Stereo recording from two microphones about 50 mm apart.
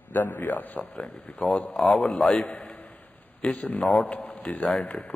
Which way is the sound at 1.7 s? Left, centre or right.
Centre.